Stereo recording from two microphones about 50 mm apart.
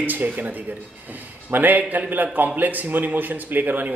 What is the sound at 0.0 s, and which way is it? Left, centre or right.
Speech, right.